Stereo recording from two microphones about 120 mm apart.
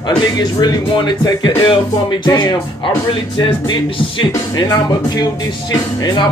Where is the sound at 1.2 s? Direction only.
40° left (ahead or behind).